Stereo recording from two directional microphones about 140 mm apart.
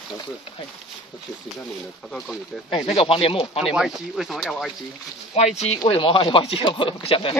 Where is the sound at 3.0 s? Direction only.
40° left (ahead or behind).